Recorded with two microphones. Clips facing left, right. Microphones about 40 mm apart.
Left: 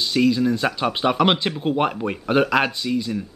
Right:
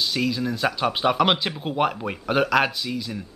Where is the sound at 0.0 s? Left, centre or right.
Centre.